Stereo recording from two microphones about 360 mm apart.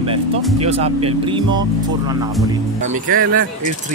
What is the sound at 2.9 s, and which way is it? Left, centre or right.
Speech, right.